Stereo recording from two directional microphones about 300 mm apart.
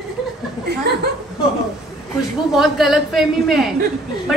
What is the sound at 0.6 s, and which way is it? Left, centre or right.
Speech, right.